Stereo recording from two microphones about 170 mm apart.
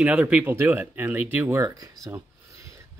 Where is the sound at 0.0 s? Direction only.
5° right (ahead or behind).